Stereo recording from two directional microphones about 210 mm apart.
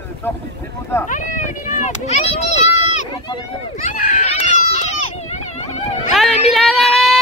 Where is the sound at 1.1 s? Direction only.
35° left (ahead or behind).